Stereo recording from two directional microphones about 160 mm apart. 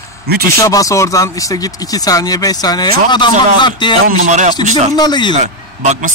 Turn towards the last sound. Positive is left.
turn(degrees=-50)  # may be behind; listen again after turning